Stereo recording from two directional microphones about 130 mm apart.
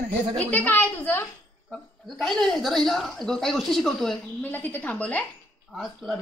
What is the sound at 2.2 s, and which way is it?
A woman's voice, 5° left (ahead or behind).